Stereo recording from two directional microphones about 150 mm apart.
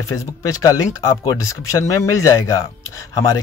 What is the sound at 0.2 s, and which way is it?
Speech, 20° left (ahead or behind).